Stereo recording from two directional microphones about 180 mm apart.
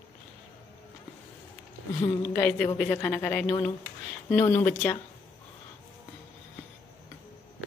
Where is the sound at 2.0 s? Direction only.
15° left (ahead or behind).